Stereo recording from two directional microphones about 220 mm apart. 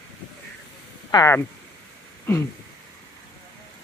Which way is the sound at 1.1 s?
15° left (ahead or behind).